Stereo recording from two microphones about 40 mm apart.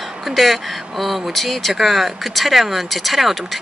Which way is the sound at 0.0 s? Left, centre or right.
Centre.